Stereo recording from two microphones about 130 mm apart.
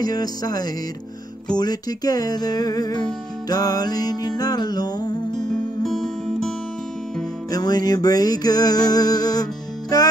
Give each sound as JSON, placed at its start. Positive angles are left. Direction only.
{"t": 0.0, "sound": "music", "side_deg": 30}
{"t": 5.9, "sound": "music", "side_deg": 5}
{"t": 7.5, "sound": "music", "side_deg": 30}